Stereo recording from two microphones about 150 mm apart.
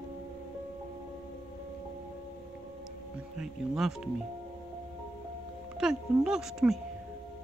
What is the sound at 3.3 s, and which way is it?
Speech, 5° right (ahead or behind).